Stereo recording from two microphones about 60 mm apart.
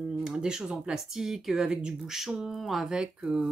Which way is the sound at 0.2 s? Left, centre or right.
Centre.